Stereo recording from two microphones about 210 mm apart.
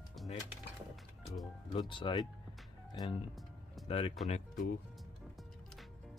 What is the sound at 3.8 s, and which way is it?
Speech, 25° left (ahead or behind).